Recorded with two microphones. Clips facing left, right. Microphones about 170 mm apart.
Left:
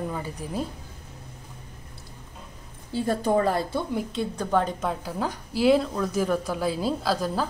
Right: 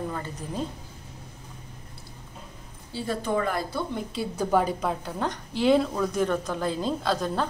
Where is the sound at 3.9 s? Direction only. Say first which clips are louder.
Left 3 dB; centre (ahead or behind).